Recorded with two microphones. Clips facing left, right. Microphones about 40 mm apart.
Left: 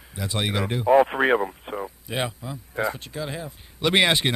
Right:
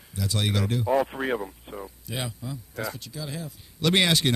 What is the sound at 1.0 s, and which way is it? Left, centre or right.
Speech, left.